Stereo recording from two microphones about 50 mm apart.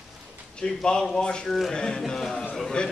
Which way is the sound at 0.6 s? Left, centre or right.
Centre.